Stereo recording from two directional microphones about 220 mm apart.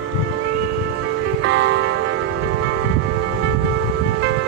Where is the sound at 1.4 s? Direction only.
55° right (ahead or behind).